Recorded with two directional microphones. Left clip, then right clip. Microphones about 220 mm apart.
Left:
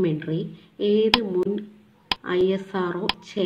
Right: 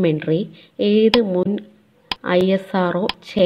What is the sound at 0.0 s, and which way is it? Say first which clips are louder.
Speech: right 7 dB; 30° right (ahead or behind).